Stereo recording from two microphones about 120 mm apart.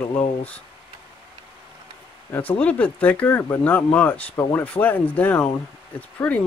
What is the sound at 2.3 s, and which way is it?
Speech, 10° left (ahead or behind).